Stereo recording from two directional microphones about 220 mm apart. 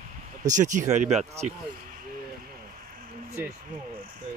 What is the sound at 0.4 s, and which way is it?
Speech, 35° right (ahead or behind).